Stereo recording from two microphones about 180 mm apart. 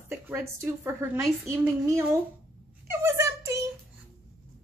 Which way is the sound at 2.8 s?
15° right (ahead or behind).